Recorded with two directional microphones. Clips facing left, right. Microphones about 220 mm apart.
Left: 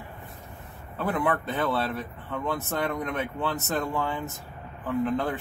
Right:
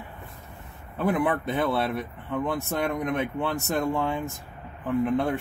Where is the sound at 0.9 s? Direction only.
15° right (ahead or behind).